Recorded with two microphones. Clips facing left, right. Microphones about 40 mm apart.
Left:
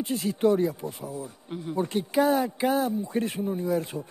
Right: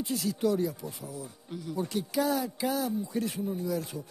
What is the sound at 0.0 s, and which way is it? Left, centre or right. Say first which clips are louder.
Speech: left 5 dB; left.